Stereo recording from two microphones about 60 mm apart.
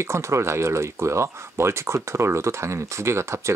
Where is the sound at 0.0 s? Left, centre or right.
Right.